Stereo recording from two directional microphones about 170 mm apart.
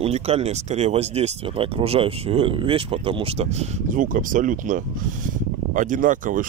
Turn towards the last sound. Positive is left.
turn(degrees=-50)  # may be behind; listen again after turning